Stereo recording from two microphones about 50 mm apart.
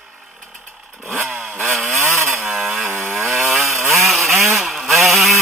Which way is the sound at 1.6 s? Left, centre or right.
Centre.